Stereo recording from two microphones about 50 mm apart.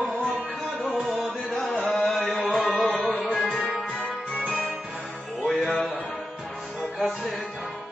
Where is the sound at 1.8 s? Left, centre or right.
Centre.